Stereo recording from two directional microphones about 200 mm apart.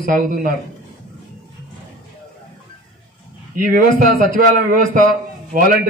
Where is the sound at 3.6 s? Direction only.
45° right (ahead or behind).